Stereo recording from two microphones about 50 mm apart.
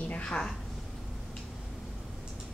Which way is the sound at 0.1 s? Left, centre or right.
Left.